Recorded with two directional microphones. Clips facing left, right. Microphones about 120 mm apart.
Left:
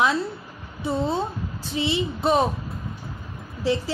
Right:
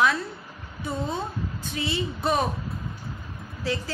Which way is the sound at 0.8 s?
30° left (ahead or behind).